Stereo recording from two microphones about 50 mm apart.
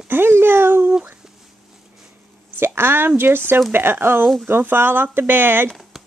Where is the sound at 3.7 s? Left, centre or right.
Right.